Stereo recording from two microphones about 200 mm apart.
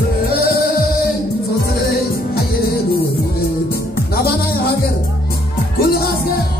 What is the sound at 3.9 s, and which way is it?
Music, 50° left (ahead or behind).